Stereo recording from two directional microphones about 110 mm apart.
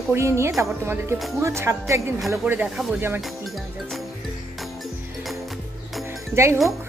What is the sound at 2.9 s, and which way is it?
Music, 20° right (ahead or behind).